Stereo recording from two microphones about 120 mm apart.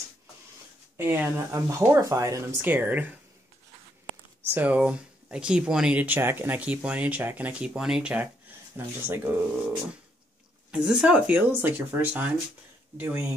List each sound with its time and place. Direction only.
0.9 s speech: 20° right (ahead or behind)
4.5 s speech: 15° right (ahead or behind)
10.7 s speech: 5° right (ahead or behind)